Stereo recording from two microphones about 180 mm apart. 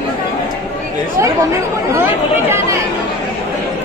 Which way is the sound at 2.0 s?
10° right (ahead or behind).